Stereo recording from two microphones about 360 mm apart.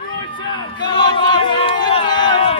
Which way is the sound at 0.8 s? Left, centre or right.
Centre.